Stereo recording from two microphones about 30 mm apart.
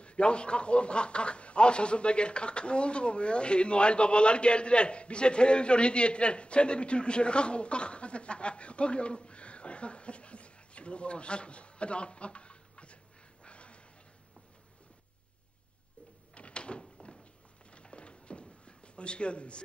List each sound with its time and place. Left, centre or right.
0.0 s speech: left
16.3 s door: left
17.2 s a sound: left